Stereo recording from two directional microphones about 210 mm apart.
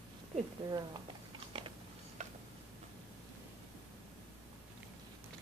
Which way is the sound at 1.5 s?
25° right (ahead or behind).